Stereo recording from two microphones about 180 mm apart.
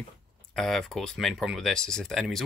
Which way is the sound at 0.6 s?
Centre (ahead or behind).